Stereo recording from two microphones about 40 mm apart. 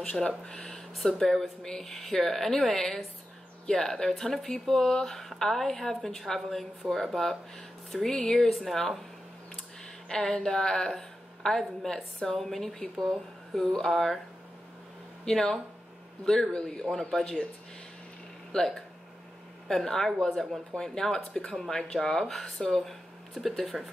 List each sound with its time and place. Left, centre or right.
0.0 s speech: left
0.5 s speech: centre
8.5 s speech: centre
10.0 s a woman's voice: centre
15.2 s speech: centre
18.5 s speech: centre
21.5 s speech: centre